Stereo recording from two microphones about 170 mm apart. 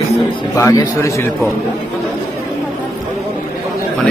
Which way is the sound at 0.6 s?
20° left (ahead or behind).